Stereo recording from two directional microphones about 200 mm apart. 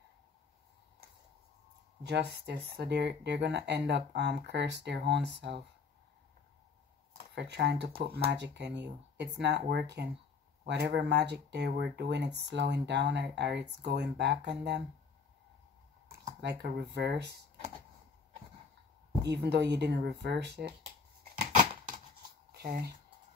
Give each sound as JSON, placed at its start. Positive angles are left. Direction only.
{"t": 2.0, "sound": "speech", "side_deg": -55}
{"t": 7.3, "sound": "speech", "side_deg": -60}
{"t": 16.3, "sound": "speech", "side_deg": -55}
{"t": 19.4, "sound": "speech", "side_deg": -60}
{"t": 22.5, "sound": "a sound", "side_deg": -50}